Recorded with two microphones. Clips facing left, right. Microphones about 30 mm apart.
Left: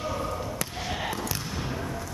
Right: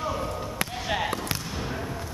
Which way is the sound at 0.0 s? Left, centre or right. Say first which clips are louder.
Right 1 dB; centre.